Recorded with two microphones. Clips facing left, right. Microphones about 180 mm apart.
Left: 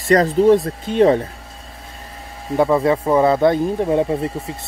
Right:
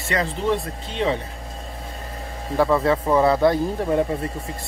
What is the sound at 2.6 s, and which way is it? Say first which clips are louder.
Speech: left 3 dB; 20° left (ahead or behind).